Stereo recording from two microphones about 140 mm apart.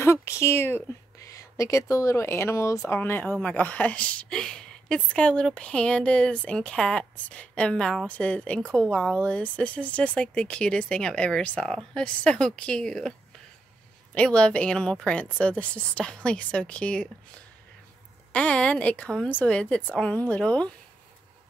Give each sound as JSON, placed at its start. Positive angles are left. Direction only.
{"t": 0.0, "sound": "a woman's voice", "side_deg": 20}
{"t": 14.1, "sound": "a woman's voice", "side_deg": 5}
{"t": 18.3, "sound": "a woman's voice", "side_deg": 10}